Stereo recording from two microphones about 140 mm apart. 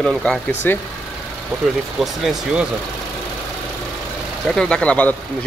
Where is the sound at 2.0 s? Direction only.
5° right (ahead or behind).